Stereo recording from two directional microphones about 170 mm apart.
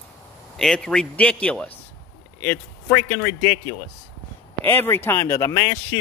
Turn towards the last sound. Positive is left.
turn(degrees=15)  # may be behind; listen again after turning